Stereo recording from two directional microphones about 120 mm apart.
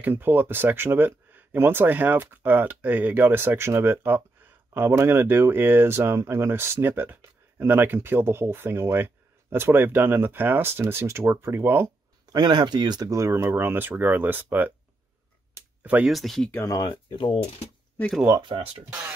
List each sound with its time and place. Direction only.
0.0 s speech: 15° right (ahead or behind)
12.3 s speech: 40° right (ahead or behind); by 14.7 s 15° right (ahead or behind)
15.8 s speech: 10° right (ahead or behind)
16.1 s speech: centre (ahead or behind)
16.5 s speech: 25° left (ahead or behind)
16.8 s speech: 45° left (ahead or behind)
18.4 s speech: 45° right (ahead or behind)